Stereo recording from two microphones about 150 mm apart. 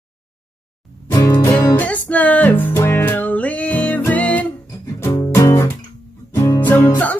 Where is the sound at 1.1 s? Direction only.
25° left (ahead or behind).